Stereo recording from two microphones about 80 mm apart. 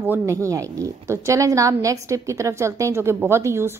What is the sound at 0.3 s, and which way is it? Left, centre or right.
A woman's voice, right.